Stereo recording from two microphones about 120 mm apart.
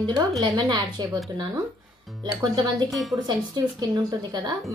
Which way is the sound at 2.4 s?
35° right (ahead or behind).